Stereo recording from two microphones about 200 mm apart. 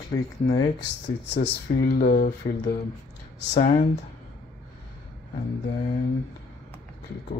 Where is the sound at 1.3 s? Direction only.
60° left (ahead or behind).